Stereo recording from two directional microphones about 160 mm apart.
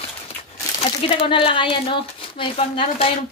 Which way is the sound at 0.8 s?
35° left (ahead or behind).